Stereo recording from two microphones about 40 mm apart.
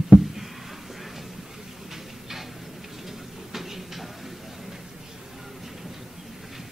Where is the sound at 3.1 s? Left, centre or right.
Centre.